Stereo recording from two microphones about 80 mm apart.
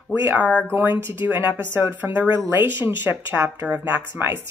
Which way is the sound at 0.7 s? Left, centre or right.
Right.